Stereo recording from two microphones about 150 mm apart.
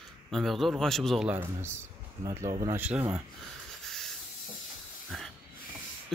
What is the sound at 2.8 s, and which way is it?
Speech, 10° right (ahead or behind).